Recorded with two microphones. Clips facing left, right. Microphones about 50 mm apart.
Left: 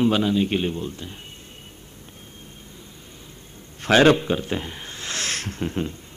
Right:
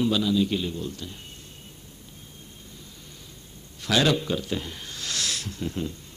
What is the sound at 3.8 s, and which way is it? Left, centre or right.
A man's voice, left.